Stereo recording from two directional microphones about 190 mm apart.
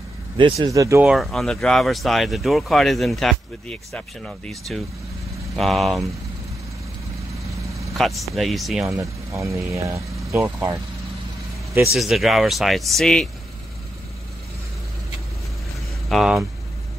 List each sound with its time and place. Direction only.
0.4 s speech: 25° right (ahead or behind)
0.7 s speech: 15° right (ahead or behind)
1.1 s speech: centre (ahead or behind)
7.9 s speech: centre (ahead or behind)
8.8 s speech: 15° right (ahead or behind)
11.9 s speech: centre (ahead or behind)
16.1 s speech: centre (ahead or behind)